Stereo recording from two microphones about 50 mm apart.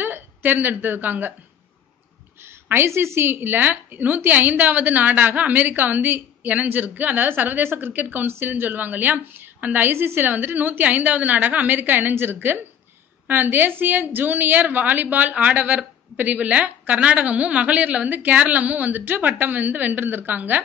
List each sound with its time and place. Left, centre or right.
0.0 s a woman's voice: right
2.4 s a woman's voice: right
6.4 s a woman's voice: right
9.8 s a woman's voice: right